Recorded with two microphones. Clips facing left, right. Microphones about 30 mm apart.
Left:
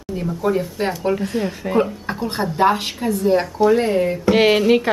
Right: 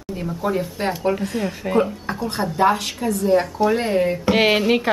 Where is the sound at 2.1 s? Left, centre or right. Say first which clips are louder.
Left 1 dB; centre.